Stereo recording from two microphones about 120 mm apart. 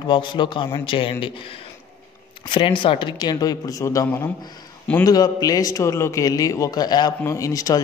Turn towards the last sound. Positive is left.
turn(degrees=30)  # may be behind; listen again after turning